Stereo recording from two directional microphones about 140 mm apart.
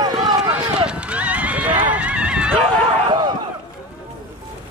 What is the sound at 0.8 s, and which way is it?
Horse, 10° right (ahead or behind).